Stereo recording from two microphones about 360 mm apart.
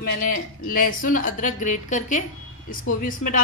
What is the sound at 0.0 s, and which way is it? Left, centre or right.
Speech, left.